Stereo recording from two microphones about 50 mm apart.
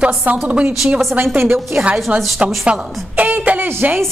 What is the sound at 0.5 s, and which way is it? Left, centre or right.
Speech, right.